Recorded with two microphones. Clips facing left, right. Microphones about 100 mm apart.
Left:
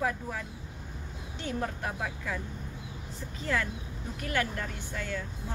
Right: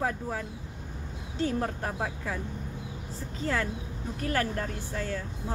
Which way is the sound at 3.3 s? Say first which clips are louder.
Right 2 dB; 35° right (ahead or behind).